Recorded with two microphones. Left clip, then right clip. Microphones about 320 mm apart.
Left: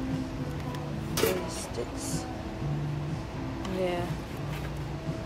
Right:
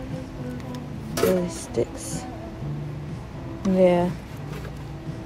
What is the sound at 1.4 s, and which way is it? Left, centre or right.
Music, centre.